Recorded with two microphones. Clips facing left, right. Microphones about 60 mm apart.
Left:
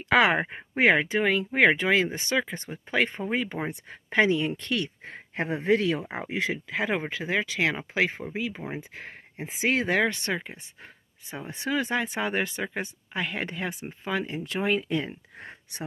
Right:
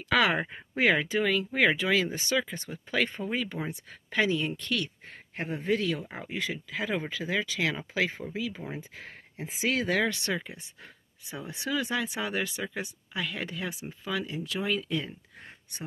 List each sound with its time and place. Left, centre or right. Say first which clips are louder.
0.2 s speech: left 4 dB; left
4.1 s speech: left 4 dB; left
5.0 s speech: left 5 dB; left
5.7 s speech: left 5 dB; left
6.9 s speech: left 1 dB; left
10.0 s speech: left 2 dB; left